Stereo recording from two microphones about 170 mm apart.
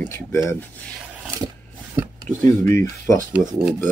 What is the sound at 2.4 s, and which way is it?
Speech, 15° left (ahead or behind).